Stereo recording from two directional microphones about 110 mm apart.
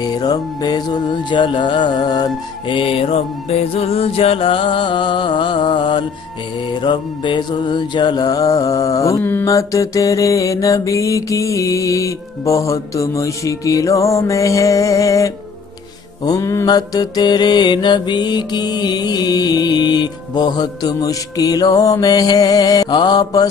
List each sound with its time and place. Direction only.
0.0 s mantra: 40° left (ahead or behind)
2.8 s music: 60° left (ahead or behind)
6.8 s mantra: 45° left (ahead or behind); by 9.2 s 30° left (ahead or behind)
9.2 s mantra: 20° left (ahead or behind)
9.5 s mantra: 30° left (ahead or behind)